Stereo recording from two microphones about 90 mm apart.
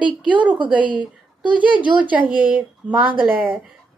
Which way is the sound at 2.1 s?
15° right (ahead or behind).